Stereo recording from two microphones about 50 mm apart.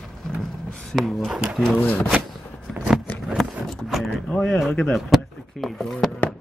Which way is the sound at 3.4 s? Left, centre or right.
Centre.